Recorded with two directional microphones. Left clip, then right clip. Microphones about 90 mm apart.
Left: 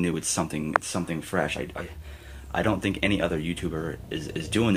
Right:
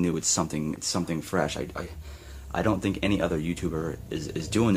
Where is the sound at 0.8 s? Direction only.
80° right; by 1.9 s 60° right (ahead or behind).